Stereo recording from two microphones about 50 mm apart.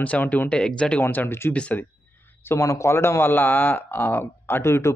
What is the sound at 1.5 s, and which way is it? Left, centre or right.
Speech, left.